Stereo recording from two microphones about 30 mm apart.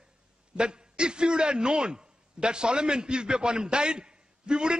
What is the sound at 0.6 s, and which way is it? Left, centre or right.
A man's voice, right.